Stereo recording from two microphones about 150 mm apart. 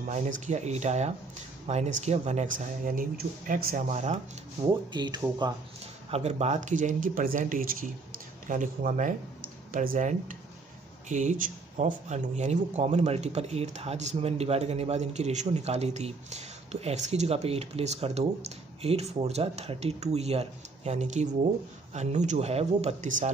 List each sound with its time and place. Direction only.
0.1 s speech: 50° right (ahead or behind); by 3.8 s 70° right (ahead or behind)
3.9 s speech: 50° right (ahead or behind)
4.9 s speech: 30° right (ahead or behind)
6.0 s speech: 45° right (ahead or behind)